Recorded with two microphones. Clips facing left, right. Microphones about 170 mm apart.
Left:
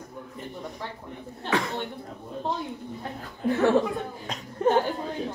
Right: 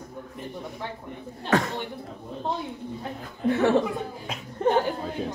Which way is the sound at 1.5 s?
45° right (ahead or behind).